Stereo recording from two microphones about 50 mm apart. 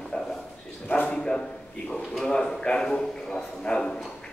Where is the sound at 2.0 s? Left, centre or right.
Centre.